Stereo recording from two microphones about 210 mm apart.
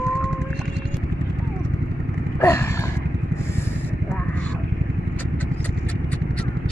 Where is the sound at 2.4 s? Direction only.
10° left (ahead or behind).